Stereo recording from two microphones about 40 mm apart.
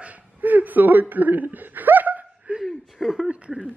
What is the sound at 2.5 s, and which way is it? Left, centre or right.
Chuckle, right.